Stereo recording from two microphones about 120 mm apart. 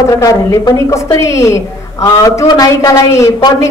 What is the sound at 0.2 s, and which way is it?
A woman's voice, 30° left (ahead or behind).